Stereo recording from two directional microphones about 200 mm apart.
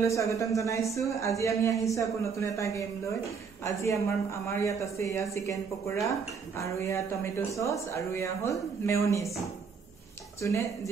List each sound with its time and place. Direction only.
0.0 s speech: 15° left (ahead or behind)
10.4 s speech: 15° left (ahead or behind)